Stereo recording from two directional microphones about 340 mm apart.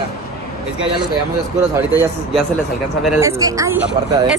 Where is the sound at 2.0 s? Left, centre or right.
Centre.